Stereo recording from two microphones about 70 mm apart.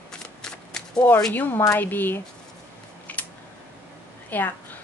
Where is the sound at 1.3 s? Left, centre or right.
Left.